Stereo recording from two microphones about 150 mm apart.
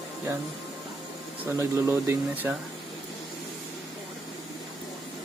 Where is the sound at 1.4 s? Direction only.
15° right (ahead or behind).